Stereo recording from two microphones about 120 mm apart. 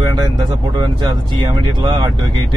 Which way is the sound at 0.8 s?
40° right (ahead or behind).